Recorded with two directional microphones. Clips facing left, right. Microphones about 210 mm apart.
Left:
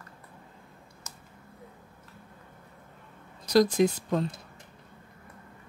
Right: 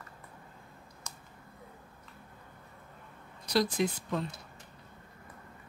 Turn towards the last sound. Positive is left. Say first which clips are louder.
# left 6 dB
turn(degrees=45)  # may be behind; listen again after turning